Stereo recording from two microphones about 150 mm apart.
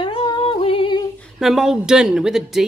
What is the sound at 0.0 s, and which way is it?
Singing, 35° left (ahead or behind).